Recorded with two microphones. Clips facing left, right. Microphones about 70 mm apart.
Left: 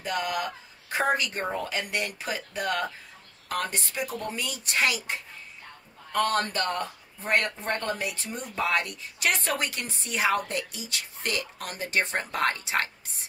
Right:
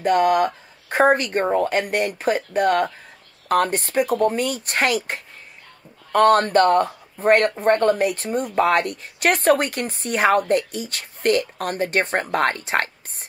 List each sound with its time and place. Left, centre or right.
0.0 s speech: right